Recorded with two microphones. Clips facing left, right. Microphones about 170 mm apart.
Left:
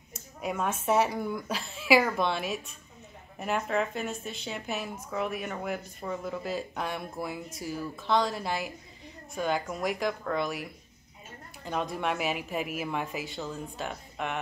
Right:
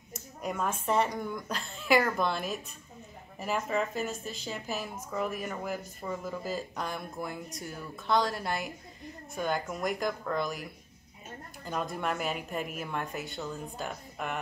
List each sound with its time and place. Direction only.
0.1 s speech: 5° left (ahead or behind)
11.6 s speech: centre (ahead or behind)